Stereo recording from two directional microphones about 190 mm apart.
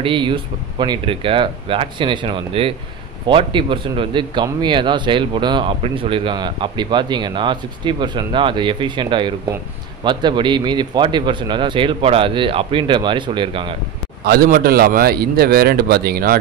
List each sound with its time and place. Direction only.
0.0 s speech: 25° right (ahead or behind)
14.2 s a man's voice: 55° right (ahead or behind)